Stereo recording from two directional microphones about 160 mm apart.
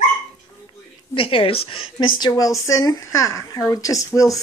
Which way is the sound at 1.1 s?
35° left (ahead or behind).